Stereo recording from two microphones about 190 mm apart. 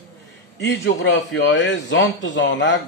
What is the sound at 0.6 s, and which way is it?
A man's voice, 70° left (ahead or behind).